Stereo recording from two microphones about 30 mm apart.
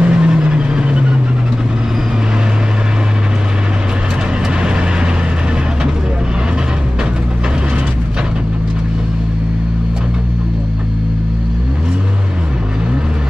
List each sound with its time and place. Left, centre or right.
0.0 s vehicle: right
4.6 s vehicle: right